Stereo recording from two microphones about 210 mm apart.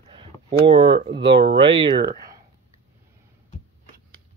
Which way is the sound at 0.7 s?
25° right (ahead or behind).